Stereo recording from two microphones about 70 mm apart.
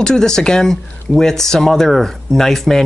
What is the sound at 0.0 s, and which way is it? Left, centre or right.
Speech, centre.